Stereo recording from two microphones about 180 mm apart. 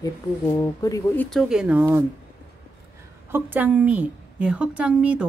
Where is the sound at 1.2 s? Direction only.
Centre (ahead or behind).